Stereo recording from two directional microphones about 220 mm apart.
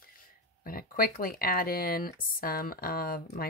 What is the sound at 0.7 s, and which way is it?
Speech, 40° left (ahead or behind).